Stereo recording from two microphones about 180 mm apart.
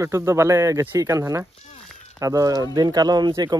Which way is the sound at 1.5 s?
35° left (ahead or behind).